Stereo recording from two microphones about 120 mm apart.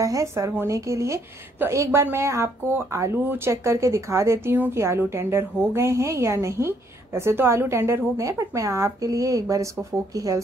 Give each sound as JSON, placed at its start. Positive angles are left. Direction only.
{"t": 0.0, "sound": "a woman's voice", "side_deg": -25}